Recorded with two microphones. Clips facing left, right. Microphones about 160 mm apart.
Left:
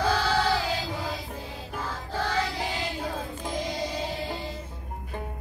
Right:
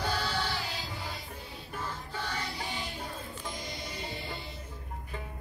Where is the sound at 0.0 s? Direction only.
90° left.